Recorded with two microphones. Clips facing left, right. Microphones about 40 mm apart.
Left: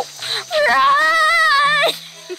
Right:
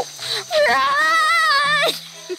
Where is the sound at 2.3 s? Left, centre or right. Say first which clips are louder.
Right 1 dB; left.